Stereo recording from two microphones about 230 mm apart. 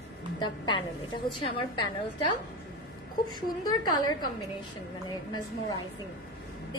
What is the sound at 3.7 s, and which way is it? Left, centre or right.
Speech, centre.